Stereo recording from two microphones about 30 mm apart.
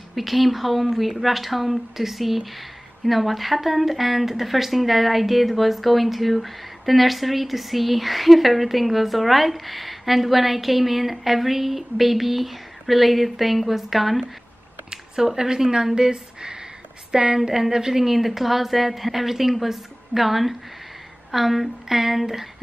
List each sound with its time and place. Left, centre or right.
0.1 s speech: centre
15.2 s a woman's voice: centre
18.0 s a woman's voice: centre